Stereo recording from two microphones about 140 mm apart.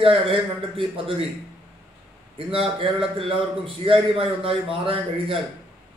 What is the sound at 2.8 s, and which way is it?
A man's voice, 40° right (ahead or behind).